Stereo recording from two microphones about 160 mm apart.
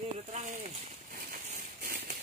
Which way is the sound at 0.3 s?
50° right (ahead or behind).